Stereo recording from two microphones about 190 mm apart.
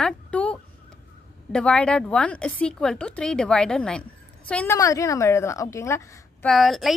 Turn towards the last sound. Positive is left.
turn(degrees=0)  # may be behind; listen again after turning